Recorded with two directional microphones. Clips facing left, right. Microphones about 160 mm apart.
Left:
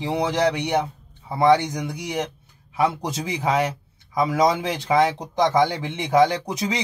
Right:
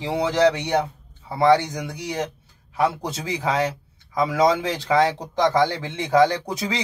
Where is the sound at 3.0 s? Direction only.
15° left (ahead or behind).